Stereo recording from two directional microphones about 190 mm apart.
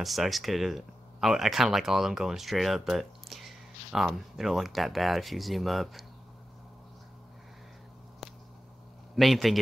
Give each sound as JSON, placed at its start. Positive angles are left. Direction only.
{"t": 0.0, "sound": "speech", "side_deg": 0}
{"t": 8.2, "sound": "a sound", "side_deg": 0}
{"t": 9.1, "sound": "a man's voice", "side_deg": 0}